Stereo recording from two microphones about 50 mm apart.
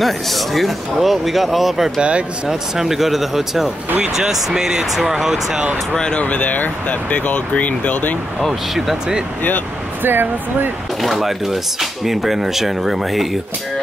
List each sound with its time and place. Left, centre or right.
0.0 s speech: centre
2.0 s speech: right
2.4 s speech: centre
5.9 s speech: centre
6.2 s speech: left
8.4 s speech: centre
10.0 s speech: right
11.0 s speech: centre